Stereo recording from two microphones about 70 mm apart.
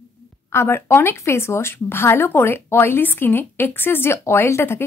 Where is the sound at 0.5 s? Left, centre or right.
Left.